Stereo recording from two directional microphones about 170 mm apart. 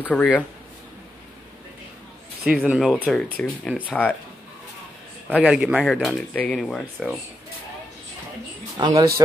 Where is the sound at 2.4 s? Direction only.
5° right (ahead or behind).